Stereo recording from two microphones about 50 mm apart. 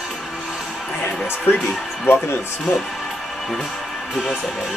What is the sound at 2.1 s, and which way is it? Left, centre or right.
Speech, left.